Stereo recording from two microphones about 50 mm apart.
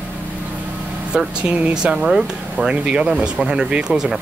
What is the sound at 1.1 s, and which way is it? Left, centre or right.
Speech, centre.